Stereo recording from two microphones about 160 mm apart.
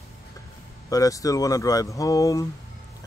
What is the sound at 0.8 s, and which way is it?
Speech, 20° left (ahead or behind).